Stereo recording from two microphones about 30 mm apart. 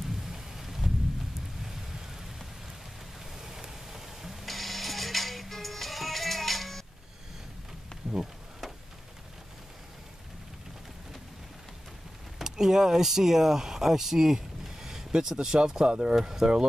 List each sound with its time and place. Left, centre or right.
0.0 s a sound: centre
3.3 s a sound: centre
4.5 s music: centre
7.9 s bee: left
12.4 s speech: centre
16.2 s speech: centre